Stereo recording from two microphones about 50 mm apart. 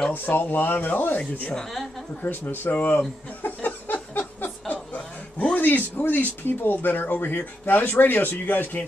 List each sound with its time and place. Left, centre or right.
0.1 s speech: left
2.2 s speech: left
3.4 s a sound: left
5.6 s speech: left